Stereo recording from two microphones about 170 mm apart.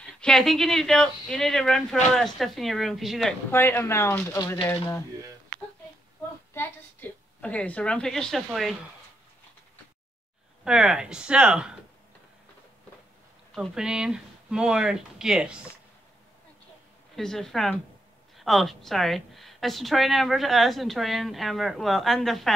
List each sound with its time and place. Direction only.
0.0 s a woman's voice: 5° left (ahead or behind)
3.5 s speech: 15° left (ahead or behind)
6.5 s a woman's voice: 10° left (ahead or behind)
10.6 s a woman's voice: 5° right (ahead or behind)
13.6 s a woman's voice: 5° right (ahead or behind)
17.1 s a woman's voice: centre (ahead or behind)